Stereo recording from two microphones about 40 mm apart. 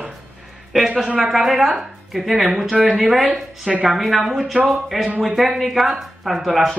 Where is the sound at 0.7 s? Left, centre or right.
Centre.